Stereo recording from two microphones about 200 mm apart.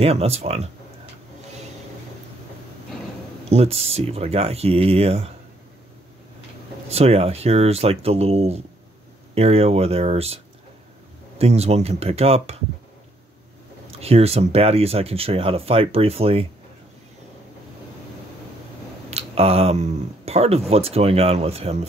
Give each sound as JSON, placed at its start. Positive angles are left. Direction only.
{"t": 0.0, "sound": "speech", "side_deg": -30}
{"t": 3.4, "sound": "speech", "side_deg": -30}
{"t": 6.9, "sound": "speech", "side_deg": -30}
{"t": 13.8, "sound": "speech", "side_deg": -30}
{"t": 19.0, "sound": "speech", "side_deg": -30}